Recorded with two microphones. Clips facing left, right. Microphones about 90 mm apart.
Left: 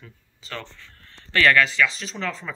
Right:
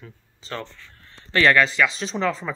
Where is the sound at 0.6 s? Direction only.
15° right (ahead or behind).